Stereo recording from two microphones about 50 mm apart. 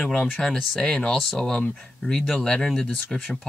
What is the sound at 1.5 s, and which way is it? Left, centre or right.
Speech, centre.